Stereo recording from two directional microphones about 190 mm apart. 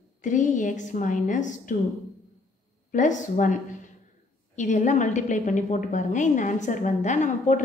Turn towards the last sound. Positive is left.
turn(degrees=40)  # may be behind; listen again after turning